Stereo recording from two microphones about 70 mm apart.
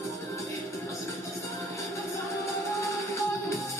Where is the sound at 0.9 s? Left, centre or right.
Left.